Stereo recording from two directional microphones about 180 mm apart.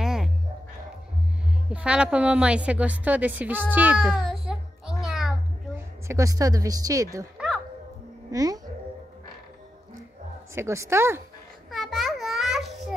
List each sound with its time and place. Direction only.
0.0 s a sound: 5° right (ahead or behind)
1.7 s a woman's voice: 5° right (ahead or behind)
6.0 s speech: 15° right (ahead or behind)
7.3 s music: centre (ahead or behind)
8.3 s speech: 20° right (ahead or behind)
10.5 s speech: 15° right (ahead or behind)
11.7 s a sound: centre (ahead or behind)